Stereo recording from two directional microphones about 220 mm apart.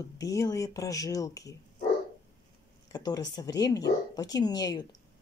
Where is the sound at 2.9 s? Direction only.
15° left (ahead or behind).